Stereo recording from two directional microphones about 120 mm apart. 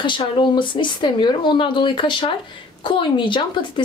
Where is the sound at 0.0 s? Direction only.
45° left (ahead or behind).